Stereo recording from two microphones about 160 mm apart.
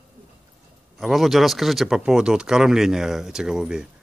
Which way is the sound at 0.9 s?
Centre (ahead or behind).